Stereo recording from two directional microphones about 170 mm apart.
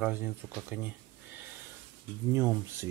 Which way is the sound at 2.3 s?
10° right (ahead or behind).